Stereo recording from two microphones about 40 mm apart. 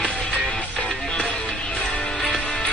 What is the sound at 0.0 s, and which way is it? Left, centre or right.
Music, left.